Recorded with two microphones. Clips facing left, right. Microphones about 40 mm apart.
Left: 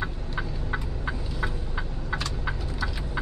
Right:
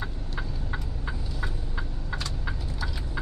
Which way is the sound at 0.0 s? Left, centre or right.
Left.